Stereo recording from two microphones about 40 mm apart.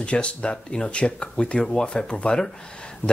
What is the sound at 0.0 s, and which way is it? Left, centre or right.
Speech, left.